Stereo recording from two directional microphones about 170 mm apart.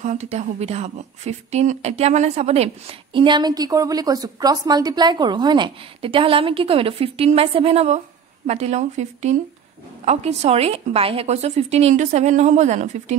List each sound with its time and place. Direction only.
0.0 s speech: 45° right (ahead or behind)